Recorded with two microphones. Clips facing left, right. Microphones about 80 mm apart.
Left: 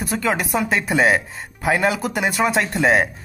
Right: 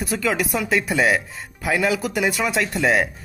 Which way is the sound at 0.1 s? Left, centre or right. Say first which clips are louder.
Left 1 dB; left.